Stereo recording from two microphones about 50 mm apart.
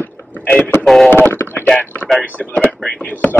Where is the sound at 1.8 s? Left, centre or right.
Left.